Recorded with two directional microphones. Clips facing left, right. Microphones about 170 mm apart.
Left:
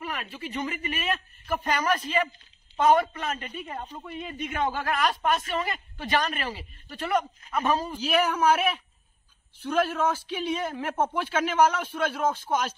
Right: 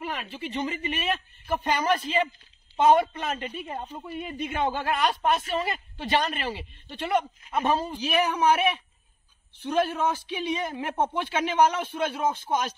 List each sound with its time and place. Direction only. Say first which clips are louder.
0.0 s a man's voice: right 1 dB; 25° right (ahead or behind)